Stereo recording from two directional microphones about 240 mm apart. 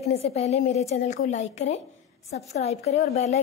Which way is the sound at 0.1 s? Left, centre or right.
Left.